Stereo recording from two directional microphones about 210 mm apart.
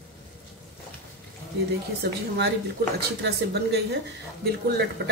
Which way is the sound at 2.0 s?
50° right (ahead or behind).